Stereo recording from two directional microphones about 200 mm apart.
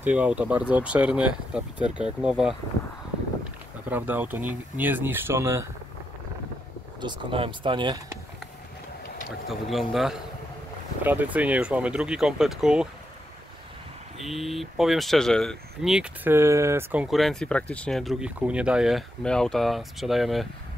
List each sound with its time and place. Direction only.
0.0 s speech: 5° right (ahead or behind)
3.9 s speech: 10° right (ahead or behind)
7.0 s speech: 25° right (ahead or behind)
9.5 s speech: centre (ahead or behind)
14.2 s speech: centre (ahead or behind)